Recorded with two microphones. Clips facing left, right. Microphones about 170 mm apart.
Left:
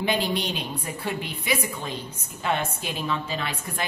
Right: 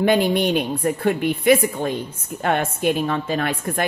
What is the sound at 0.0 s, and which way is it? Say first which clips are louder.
A woman's voice: right 8 dB; 50° right (ahead or behind).